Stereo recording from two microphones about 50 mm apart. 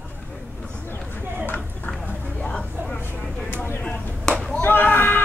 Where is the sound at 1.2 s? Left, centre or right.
Right.